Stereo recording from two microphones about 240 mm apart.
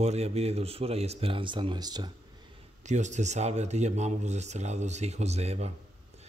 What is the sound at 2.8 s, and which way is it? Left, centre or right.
Speech, right.